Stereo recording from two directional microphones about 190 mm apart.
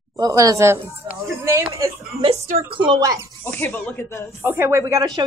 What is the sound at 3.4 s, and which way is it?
Speech, 10° left (ahead or behind).